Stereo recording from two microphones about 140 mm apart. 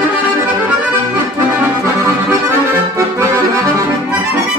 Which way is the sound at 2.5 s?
20° right (ahead or behind).